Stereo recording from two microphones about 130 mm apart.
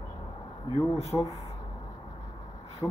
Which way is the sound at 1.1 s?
15° left (ahead or behind).